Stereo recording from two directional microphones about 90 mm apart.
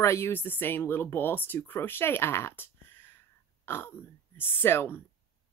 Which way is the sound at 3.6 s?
25° left (ahead or behind).